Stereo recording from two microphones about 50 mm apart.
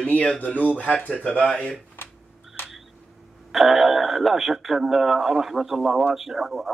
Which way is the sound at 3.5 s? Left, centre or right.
Centre.